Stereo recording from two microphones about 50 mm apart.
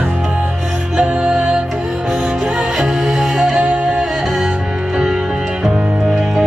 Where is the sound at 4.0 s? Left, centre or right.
Centre.